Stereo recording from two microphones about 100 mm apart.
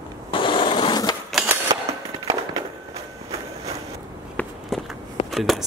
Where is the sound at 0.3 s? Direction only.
55° left (ahead or behind).